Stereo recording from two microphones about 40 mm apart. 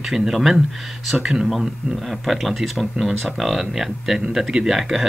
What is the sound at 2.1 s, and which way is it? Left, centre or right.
Speech, centre.